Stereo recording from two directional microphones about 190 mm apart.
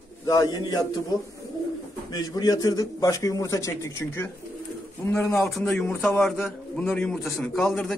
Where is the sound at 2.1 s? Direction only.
20° left (ahead or behind).